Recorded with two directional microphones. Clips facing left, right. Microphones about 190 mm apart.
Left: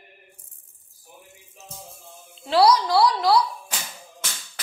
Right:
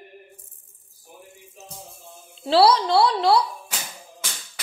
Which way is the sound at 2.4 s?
30° right (ahead or behind).